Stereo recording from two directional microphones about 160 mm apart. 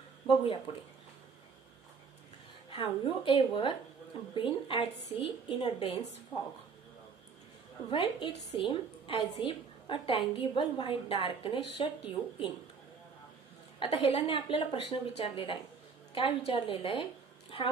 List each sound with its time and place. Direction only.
2.7 s a woman's voice: 35° left (ahead or behind)
7.9 s a woman's voice: 35° left (ahead or behind)
13.7 s a woman's voice: 35° left (ahead or behind)